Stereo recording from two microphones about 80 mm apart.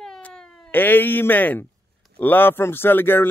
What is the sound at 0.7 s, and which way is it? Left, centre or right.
Speech, left.